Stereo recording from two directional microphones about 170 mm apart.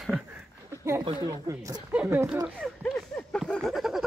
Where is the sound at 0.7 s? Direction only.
20° right (ahead or behind).